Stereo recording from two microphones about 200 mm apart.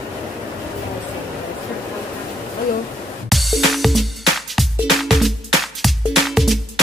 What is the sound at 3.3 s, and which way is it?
Music, centre (ahead or behind).